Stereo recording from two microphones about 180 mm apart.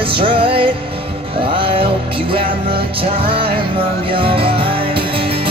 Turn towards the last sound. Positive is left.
turn(degrees=-30)  # may be behind; listen again after turning